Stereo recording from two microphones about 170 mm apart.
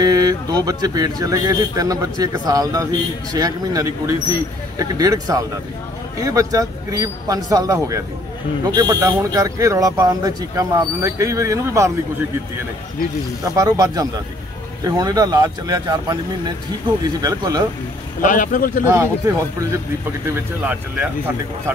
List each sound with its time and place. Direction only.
0.0 s speech: 20° right (ahead or behind)
13.6 s speech: 20° right (ahead or behind)
18.2 s a man's voice: 50° left (ahead or behind)
18.9 s speech: 15° right (ahead or behind)